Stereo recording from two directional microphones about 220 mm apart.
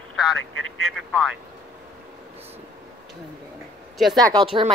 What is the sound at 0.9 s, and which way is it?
Speech, centre (ahead or behind).